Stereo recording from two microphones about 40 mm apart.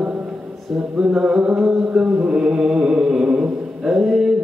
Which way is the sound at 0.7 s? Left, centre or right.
Centre.